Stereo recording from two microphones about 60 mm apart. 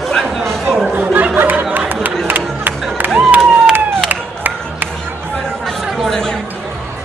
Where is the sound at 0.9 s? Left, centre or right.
Right.